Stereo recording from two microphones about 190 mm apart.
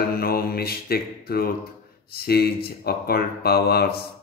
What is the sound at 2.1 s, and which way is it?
Mantra, 55° left (ahead or behind).